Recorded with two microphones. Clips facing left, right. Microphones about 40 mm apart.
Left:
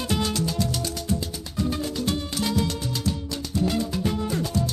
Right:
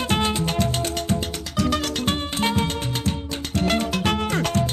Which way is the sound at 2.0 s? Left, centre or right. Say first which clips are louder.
Right 3 dB; right.